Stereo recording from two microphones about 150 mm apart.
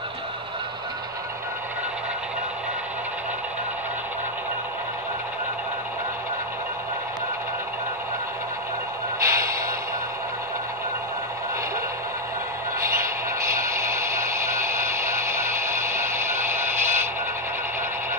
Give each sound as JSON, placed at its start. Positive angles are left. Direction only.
{"t": 9.2, "sound": "music", "side_deg": -20}
{"t": 13.5, "sound": "radio", "side_deg": -20}